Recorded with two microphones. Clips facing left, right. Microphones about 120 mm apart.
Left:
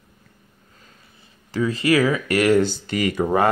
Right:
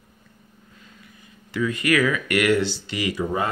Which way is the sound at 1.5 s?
35° left (ahead or behind).